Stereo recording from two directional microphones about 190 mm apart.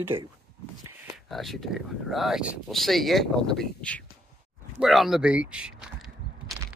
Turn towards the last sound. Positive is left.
turn(degrees=-5)  # may be behind; listen again after turning